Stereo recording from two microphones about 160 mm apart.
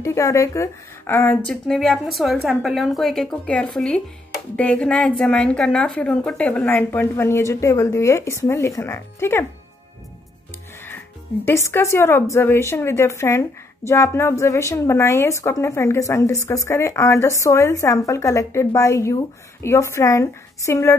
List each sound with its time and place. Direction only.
0.0 s a woman's voice: 20° left (ahead or behind)
11.4 s a woman's voice: 20° left (ahead or behind)